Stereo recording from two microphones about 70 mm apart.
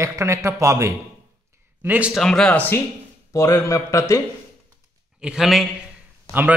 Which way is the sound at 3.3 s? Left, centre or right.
Left.